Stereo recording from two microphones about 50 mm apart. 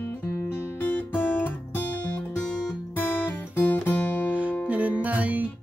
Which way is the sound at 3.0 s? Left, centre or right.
Left.